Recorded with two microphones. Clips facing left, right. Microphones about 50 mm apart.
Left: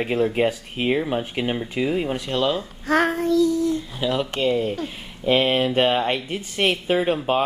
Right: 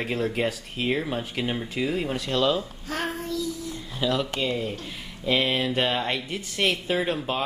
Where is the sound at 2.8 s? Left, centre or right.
Left.